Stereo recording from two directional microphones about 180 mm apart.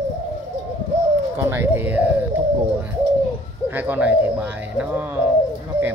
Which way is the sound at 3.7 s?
10° right (ahead or behind).